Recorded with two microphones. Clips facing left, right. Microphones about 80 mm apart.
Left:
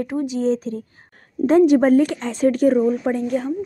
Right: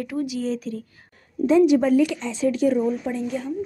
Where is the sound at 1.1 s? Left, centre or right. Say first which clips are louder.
Left 2 dB; left.